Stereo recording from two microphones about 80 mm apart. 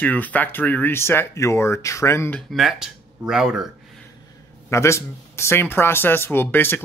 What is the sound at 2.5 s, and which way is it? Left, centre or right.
Speech, centre.